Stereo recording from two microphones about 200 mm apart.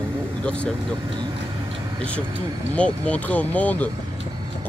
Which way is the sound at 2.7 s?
5° left (ahead or behind).